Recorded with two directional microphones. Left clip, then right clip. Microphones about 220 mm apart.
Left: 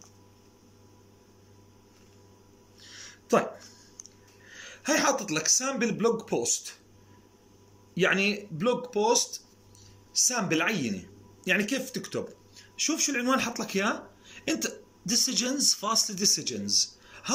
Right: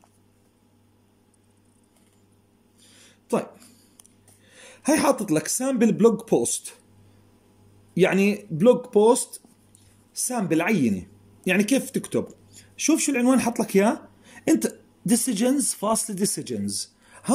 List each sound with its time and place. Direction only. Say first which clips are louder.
2.8 s a sound: left 7 dB; 30° right (ahead or behind)
4.5 s speech: right 5 dB; 25° right (ahead or behind)
7.9 s speech: right 4 dB; 25° right (ahead or behind)